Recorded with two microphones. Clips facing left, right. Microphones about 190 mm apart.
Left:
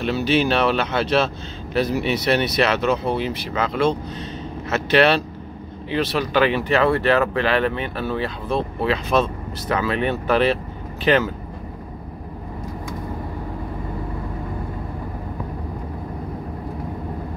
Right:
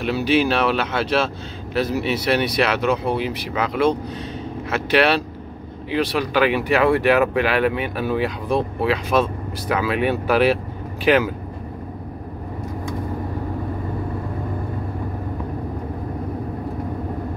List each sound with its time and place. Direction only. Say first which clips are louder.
0.0 s speech: right 1 dB; 10° right (ahead or behind)